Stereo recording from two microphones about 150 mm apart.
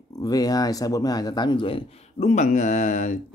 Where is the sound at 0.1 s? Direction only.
25° left (ahead or behind).